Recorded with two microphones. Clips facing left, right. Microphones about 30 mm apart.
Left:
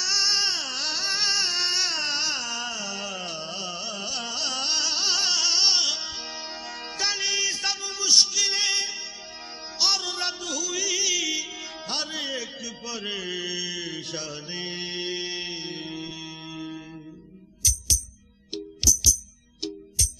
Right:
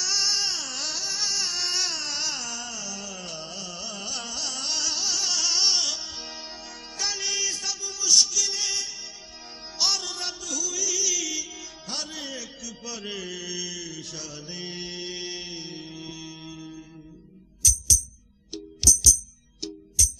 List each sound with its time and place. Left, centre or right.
0.0 s a sound: centre
1.0 s a sound: left; by 4.4 s centre
4.4 s music: left
7.6 s music: left
9.8 s music: centre
11.9 s a sound: left
13.8 s mantra: left
17.6 s music: left
18.8 s music: centre